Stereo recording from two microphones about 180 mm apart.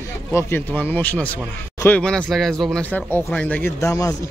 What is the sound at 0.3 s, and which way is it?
Speech, 15° left (ahead or behind).